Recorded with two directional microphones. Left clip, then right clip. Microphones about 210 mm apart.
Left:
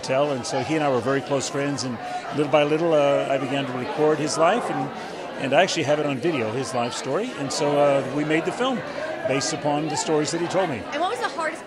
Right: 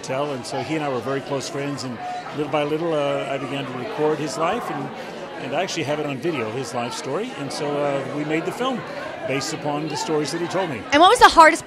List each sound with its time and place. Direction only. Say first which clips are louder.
0.1 s a man's voice: left 3 dB; 20° left (ahead or behind)
10.9 s a woman's voice: right 13 dB; 55° right (ahead or behind); by 11.5 s 75° right (ahead or behind)